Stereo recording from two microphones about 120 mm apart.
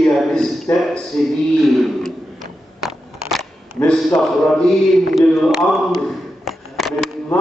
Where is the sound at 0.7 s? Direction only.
15° left (ahead or behind).